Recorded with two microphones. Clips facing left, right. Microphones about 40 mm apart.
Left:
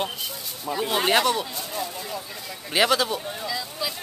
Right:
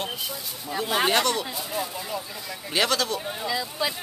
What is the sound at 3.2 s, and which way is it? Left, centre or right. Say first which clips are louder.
Speech: right 2 dB; centre.